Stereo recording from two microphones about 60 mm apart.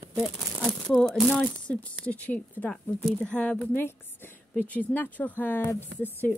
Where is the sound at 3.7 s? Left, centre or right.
Left.